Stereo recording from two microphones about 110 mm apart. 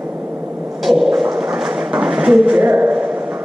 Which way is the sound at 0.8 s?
Centre (ahead or behind).